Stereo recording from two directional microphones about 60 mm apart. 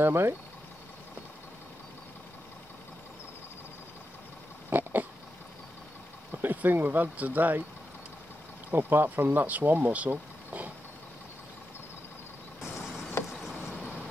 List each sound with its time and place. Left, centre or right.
0.0 s speech: right
4.6 s pig: right
6.3 s speech: right
8.7 s speech: right